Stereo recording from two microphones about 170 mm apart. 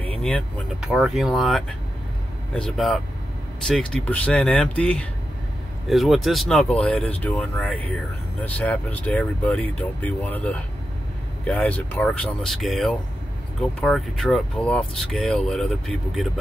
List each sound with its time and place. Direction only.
0.2 s speech: centre (ahead or behind)